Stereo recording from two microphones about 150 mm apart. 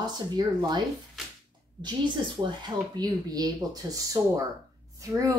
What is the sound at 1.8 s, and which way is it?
Speech, 30° right (ahead or behind).